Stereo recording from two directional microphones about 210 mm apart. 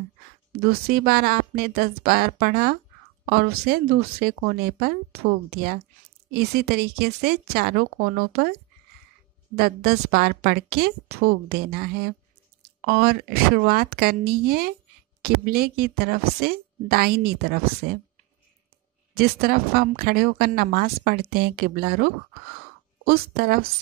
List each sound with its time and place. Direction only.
0.7 s speech: 45° right (ahead or behind)
9.6 s speech: 45° right (ahead or behind)
19.1 s speech: 50° right (ahead or behind)